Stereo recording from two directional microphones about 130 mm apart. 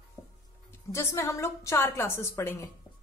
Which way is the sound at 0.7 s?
20° left (ahead or behind).